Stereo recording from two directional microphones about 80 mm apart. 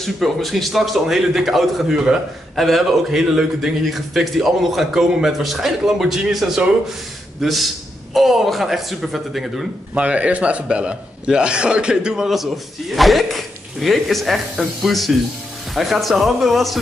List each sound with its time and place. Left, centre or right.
0.0 s a man's voice: centre
9.9 s a man's voice: centre